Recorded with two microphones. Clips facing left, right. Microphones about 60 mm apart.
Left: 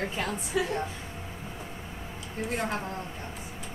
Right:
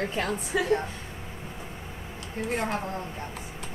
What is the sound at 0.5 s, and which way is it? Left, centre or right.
Speech, right.